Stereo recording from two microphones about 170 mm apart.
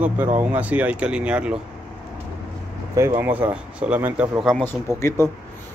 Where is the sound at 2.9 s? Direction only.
15° right (ahead or behind).